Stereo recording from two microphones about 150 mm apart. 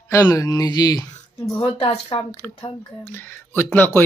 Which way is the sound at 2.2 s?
15° left (ahead or behind).